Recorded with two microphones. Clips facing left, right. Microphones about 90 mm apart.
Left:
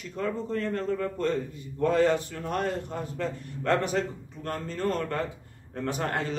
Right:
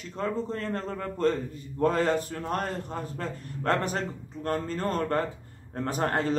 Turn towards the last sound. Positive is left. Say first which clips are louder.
# right 3 dB
turn(degrees=-40)  # may be behind; listen again after turning